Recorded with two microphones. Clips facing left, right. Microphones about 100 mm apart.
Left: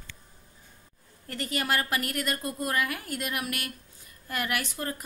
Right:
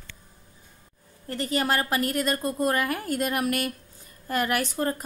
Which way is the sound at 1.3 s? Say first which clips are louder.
Right 4 dB; 30° right (ahead or behind).